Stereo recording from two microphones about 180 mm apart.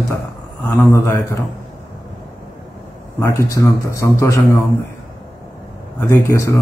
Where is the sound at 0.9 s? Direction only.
15° left (ahead or behind).